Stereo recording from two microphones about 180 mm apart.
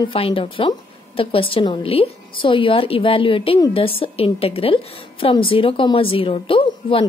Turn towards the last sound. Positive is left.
turn(degrees=30)  # may be behind; listen again after turning